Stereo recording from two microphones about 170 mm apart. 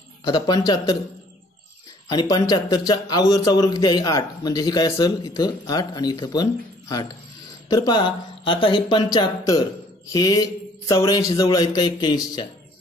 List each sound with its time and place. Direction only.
0.2 s speech: 25° left (ahead or behind)
2.0 s speech: 20° left (ahead or behind)